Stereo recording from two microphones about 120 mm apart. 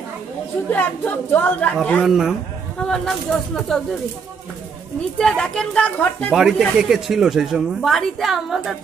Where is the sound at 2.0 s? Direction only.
5° right (ahead or behind).